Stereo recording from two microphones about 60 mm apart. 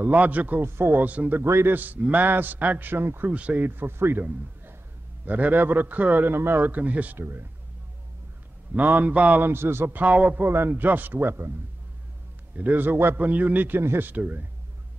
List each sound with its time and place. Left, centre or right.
0.0 s speech: right
0.7 s speech: right
1.0 s speech: right
1.4 s speech: right
1.8 s a man's voice: right
3.3 s a man's voice: right
7.2 s a man's voice: right
8.7 s speech: right
9.4 s a man's voice: right
9.9 s speech: right
10.5 s a man's voice: right
12.5 s a man's voice: right